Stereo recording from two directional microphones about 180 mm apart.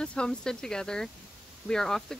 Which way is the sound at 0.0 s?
5° left (ahead or behind).